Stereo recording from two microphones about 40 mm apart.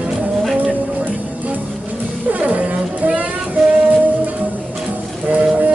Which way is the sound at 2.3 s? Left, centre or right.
Right.